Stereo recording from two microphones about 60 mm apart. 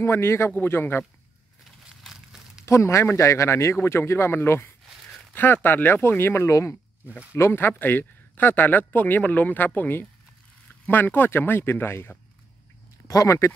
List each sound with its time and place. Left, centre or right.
0.0 s speech: left
1.8 s crumpling: centre
2.6 s speech: left
4.8 s a sound: centre
5.3 s speech: left
13.1 s speech: left